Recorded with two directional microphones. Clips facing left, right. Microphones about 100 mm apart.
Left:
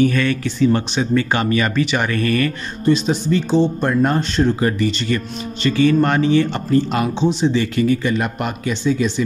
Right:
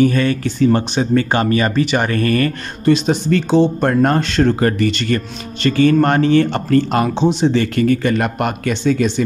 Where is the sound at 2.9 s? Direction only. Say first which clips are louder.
Right 2 dB; 65° right (ahead or behind).